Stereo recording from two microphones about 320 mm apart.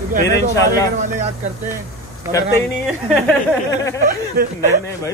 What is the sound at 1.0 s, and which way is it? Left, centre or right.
Speech, right.